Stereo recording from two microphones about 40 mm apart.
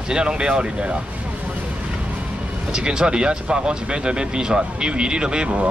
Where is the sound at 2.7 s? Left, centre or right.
Centre.